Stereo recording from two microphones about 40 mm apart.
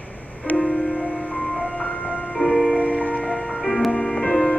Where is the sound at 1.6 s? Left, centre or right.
Left.